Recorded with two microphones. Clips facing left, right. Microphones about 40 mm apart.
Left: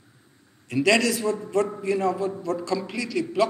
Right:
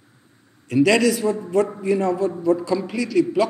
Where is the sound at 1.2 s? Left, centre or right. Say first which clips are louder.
Right 4 dB; centre.